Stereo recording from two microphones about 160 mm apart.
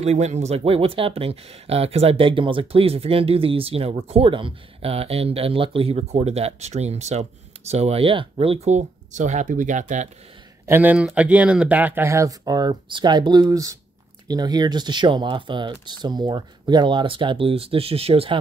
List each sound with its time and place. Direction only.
0.0 s speech: 45° right (ahead or behind)
10.7 s speech: 10° right (ahead or behind); by 18.4 s 35° right (ahead or behind)